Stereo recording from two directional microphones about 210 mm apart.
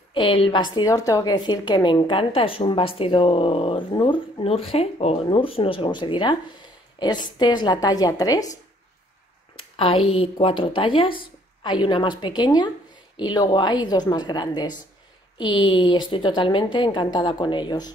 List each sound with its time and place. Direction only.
0.1 s a woman's voice: 25° left (ahead or behind)
9.6 s a sound: 25° left (ahead or behind)
10.0 s a woman's voice: 25° left (ahead or behind)